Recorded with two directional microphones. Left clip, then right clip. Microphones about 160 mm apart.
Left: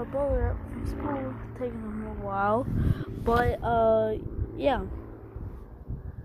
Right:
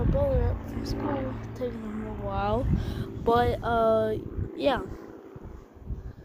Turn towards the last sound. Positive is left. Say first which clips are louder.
# even
turn(degrees=-10)  # may be behind; listen again after turning